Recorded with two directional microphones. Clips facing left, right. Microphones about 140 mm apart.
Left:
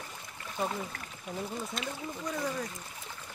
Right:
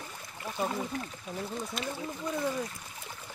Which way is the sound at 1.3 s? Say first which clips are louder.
Left 1 dB; 10° left (ahead or behind).